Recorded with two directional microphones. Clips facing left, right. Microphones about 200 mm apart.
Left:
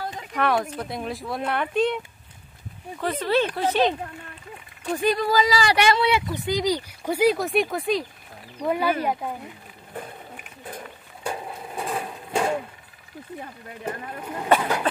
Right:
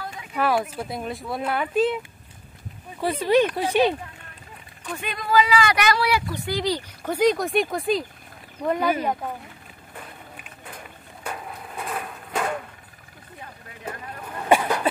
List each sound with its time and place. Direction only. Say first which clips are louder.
0.3 s speech: right 1 dB; 5° right (ahead or behind)
3.0 s speech: right 3 dB; 10° right (ahead or behind)
4.9 s speech: left 1 dB; 35° left (ahead or behind); by 9.3 s 10° left (ahead or behind)
11.2 s a sound: left 3 dB; 30° left (ahead or behind)
13.8 s speech: left 3 dB; 15° left (ahead or behind)
14.5 s a sound: right 1 dB; 10° right (ahead or behind)